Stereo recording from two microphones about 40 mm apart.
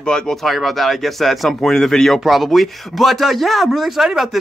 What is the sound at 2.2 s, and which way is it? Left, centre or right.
Speech, centre.